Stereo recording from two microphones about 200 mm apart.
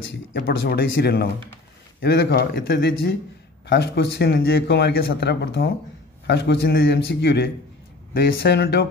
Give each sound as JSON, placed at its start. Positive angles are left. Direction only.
{"t": 0.3, "sound": "speech", "side_deg": 55}